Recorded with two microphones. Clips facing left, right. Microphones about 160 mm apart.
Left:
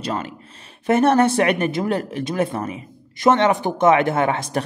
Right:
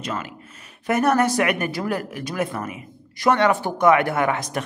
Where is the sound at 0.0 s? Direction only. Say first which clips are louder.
Left 3 dB; 35° left (ahead or behind).